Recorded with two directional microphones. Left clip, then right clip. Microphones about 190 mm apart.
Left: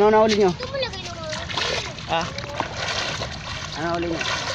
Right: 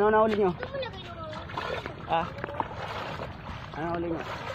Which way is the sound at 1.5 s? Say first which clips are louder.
Left 9 dB; 5° left (ahead or behind).